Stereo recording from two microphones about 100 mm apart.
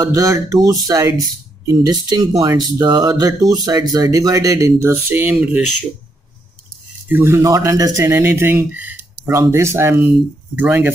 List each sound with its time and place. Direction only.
0.0 s speech: 35° right (ahead or behind); by 5.6 s 15° right (ahead or behind)
7.1 s speech: 20° right (ahead or behind)